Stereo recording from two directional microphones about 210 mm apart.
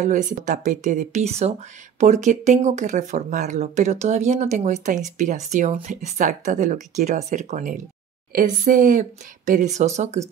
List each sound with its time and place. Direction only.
0.0 s speech: 35° right (ahead or behind)